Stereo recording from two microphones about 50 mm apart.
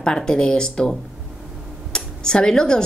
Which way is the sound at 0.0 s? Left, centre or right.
Centre.